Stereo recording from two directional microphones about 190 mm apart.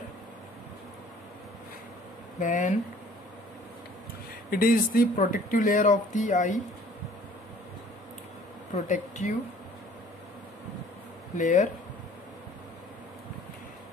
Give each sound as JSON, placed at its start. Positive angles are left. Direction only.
{"t": 2.4, "sound": "speech", "side_deg": 40}
{"t": 4.5, "sound": "speech", "side_deg": 50}
{"t": 8.7, "sound": "speech", "side_deg": 40}
{"t": 11.3, "sound": "speech", "side_deg": 40}